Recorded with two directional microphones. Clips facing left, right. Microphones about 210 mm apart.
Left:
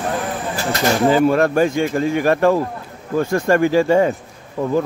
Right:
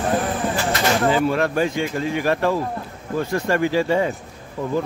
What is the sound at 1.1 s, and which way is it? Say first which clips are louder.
A man's voice: left 5 dB; 45° left (ahead or behind).